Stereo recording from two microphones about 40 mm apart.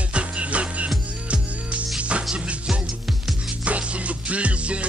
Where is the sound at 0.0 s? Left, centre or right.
Right.